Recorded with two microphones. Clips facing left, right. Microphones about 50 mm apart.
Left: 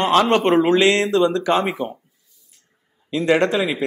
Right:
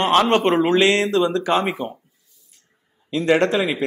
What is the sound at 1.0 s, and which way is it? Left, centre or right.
Speech, left.